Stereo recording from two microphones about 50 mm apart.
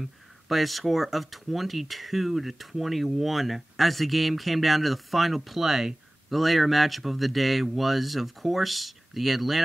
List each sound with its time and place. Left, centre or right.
0.0 s speech: centre